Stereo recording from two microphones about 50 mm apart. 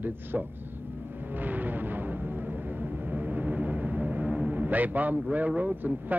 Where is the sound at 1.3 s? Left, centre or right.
Right.